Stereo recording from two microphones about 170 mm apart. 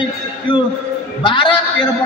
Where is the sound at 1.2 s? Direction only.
30° left (ahead or behind).